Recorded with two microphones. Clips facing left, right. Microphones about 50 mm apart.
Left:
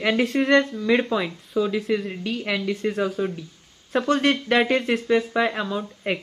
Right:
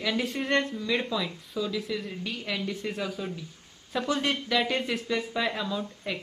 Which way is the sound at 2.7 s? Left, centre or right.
Left.